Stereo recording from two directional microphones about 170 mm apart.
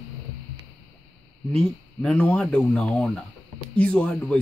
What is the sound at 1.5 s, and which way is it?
Speech, 5° left (ahead or behind).